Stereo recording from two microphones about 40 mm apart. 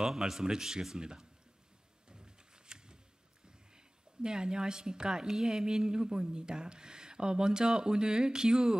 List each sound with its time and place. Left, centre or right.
0.0 s a man's voice: centre
2.0 s a sound: centre
3.4 s a woman's voice: centre